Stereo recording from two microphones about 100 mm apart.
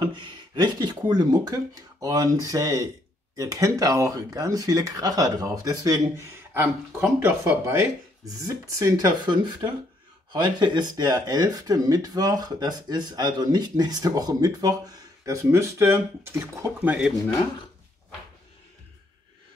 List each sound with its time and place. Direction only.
0.0 s speech: 55° right (ahead or behind); by 6.2 s 35° right (ahead or behind)
7.2 s speech: 25° right (ahead or behind)
8.4 s speech: 35° right (ahead or behind)
16.8 s speech: 10° right (ahead or behind)